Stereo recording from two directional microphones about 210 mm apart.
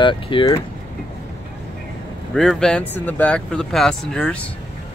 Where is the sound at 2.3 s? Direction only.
5° left (ahead or behind).